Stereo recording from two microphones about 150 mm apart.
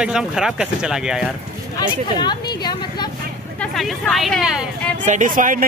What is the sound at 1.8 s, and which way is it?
A woman's voice, 25° left (ahead or behind).